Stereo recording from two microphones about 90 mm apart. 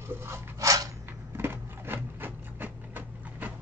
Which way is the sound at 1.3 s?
25° right (ahead or behind).